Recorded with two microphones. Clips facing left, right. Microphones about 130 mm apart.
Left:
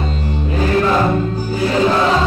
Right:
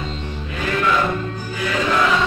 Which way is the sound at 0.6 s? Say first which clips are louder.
Left 5 dB; 35° left (ahead or behind).